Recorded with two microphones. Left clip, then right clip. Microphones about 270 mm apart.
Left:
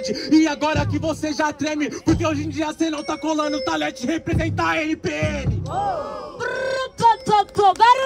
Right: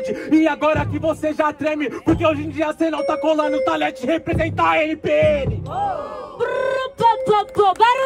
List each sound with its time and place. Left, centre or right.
0.1 s music: centre
6.5 s child singing: left
7.5 s speech: left